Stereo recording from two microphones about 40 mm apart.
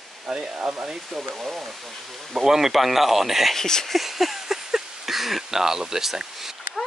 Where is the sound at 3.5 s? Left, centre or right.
Centre.